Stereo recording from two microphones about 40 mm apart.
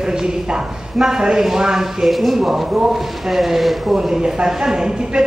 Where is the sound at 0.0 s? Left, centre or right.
Centre.